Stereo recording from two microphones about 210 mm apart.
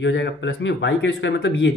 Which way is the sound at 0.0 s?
60° left (ahead or behind).